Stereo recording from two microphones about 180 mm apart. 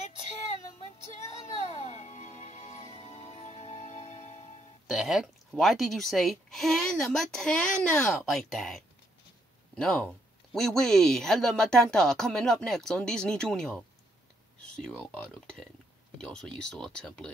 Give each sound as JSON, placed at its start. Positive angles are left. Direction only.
{"t": 0.9, "sound": "music", "side_deg": 40}
{"t": 4.8, "sound": "speech", "side_deg": 0}